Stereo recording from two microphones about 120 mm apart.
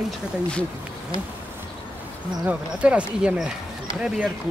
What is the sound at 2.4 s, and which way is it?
Speech, 10° right (ahead or behind).